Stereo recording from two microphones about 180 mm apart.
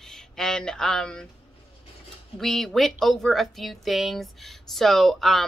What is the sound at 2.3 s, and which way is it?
A woman's voice, centre (ahead or behind).